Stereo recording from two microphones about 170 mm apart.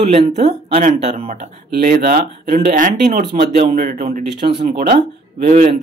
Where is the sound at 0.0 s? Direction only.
35° right (ahead or behind).